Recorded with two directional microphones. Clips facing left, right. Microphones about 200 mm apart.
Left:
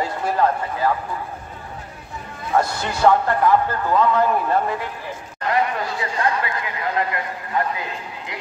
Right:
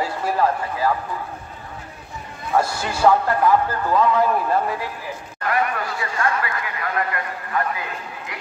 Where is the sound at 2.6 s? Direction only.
5° right (ahead or behind).